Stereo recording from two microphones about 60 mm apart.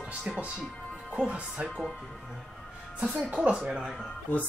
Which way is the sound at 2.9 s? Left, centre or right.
Centre.